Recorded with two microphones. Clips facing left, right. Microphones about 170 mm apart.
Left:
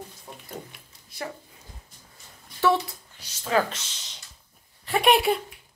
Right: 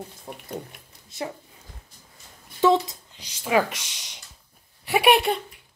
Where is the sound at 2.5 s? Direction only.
20° right (ahead or behind).